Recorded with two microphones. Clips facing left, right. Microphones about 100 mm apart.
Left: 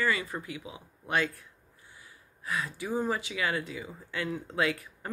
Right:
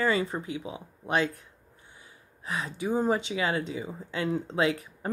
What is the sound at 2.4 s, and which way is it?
Speech, 25° right (ahead or behind).